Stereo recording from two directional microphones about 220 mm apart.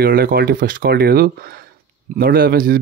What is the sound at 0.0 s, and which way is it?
Speech, 45° right (ahead or behind).